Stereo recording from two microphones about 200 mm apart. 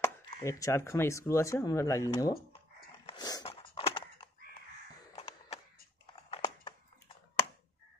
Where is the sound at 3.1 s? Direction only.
20° left (ahead or behind).